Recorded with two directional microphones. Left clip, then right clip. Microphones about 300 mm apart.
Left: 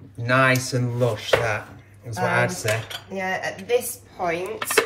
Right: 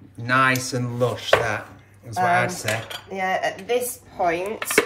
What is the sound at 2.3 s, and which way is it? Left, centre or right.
Speech, centre.